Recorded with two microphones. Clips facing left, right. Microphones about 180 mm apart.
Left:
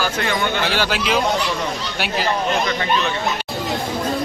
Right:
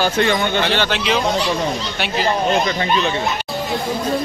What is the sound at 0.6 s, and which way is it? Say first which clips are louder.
Speech: right 2 dB; 5° left (ahead or behind).